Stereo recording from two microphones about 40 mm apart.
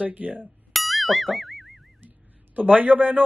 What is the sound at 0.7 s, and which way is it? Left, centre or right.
Boing, centre.